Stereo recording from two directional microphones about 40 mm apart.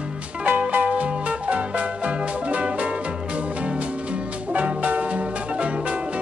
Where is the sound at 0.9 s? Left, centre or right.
Right.